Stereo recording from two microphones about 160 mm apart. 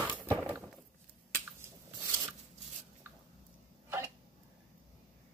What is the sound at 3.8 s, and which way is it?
Hiccup, 15° right (ahead or behind).